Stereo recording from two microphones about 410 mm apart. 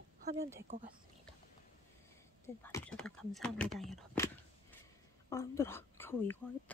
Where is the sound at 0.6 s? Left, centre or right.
Centre.